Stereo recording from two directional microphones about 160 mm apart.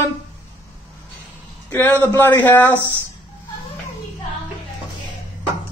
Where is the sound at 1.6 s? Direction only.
15° left (ahead or behind).